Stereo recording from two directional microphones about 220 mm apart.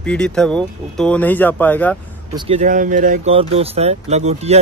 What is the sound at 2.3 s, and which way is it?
Speech, 30° right (ahead or behind).